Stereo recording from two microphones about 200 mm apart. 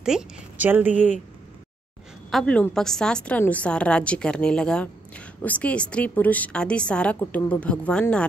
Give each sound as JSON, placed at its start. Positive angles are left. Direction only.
{"t": 0.0, "sound": "speech", "side_deg": -5}
{"t": 0.9, "sound": "speech", "side_deg": 35}
{"t": 2.3, "sound": "a woman's voice", "side_deg": 5}